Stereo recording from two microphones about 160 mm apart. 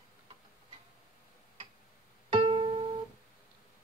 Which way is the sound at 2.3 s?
35° right (ahead or behind).